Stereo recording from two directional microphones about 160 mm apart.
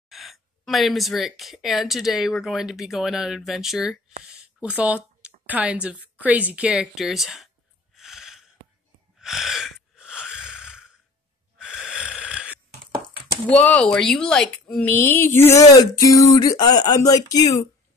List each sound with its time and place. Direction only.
0.1 s speech: centre (ahead or behind)
4.3 s a sound: 10° right (ahead or behind)
5.5 s a woman's voice: 5° right (ahead or behind)
7.9 s a sound: centre (ahead or behind)
11.5 s snoring: 5° right (ahead or behind)
13.5 s speech: 5° left (ahead or behind)